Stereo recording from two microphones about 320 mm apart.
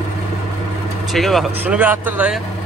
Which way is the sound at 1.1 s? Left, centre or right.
Centre.